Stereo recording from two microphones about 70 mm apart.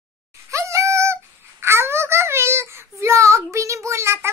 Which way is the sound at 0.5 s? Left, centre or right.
Right.